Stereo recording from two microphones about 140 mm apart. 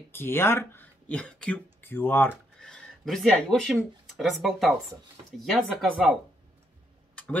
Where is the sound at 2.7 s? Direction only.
5° left (ahead or behind).